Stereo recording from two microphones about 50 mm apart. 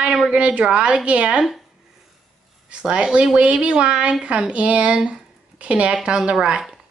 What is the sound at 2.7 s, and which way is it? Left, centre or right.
Speech, right.